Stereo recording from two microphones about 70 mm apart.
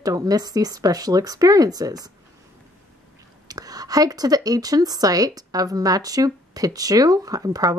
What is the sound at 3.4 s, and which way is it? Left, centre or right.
Speech, right.